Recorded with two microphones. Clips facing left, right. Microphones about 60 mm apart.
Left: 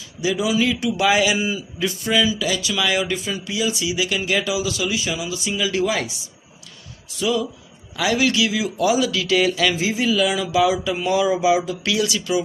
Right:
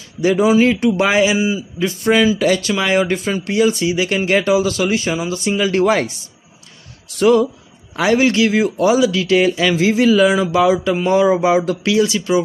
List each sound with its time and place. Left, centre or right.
0.2 s speech: right
1.8 s speech: right
2.7 s speech: right
7.2 s speech: right
7.9 s speech: right
9.1 s speech: right
9.8 s speech: right
10.1 s speech: right
11.8 s speech: right